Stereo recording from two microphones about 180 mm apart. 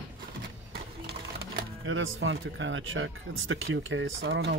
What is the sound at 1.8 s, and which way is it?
Speech, 90° right.